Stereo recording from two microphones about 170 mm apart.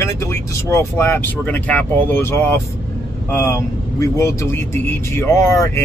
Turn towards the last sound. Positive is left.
turn(degrees=15)  # may be behind; listen again after turning